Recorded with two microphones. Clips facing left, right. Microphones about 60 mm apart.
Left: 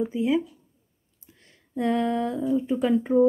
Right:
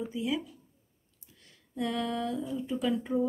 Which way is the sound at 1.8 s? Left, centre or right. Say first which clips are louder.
Left 8 dB; left.